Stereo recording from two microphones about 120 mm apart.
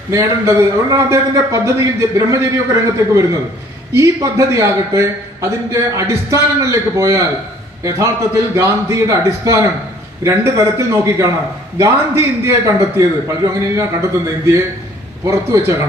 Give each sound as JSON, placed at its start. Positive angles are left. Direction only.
{"t": 0.1, "sound": "a man's voice", "side_deg": -25}